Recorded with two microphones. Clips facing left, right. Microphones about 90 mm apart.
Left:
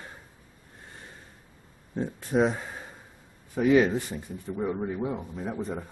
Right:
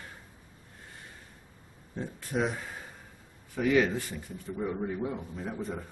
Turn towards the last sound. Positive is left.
turn(degrees=15)  # may be behind; listen again after turning